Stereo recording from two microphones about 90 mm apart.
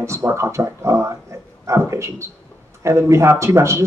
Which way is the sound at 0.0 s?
30° right (ahead or behind).